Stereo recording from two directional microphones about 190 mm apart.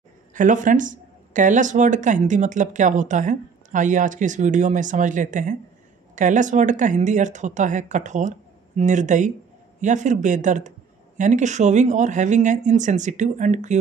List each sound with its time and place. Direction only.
0.3 s speech: 40° right (ahead or behind)